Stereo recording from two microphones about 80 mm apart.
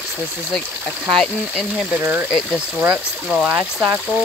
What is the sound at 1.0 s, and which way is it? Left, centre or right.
Speech, centre.